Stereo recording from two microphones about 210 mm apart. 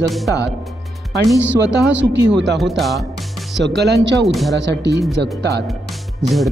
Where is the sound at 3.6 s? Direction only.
50° right (ahead or behind).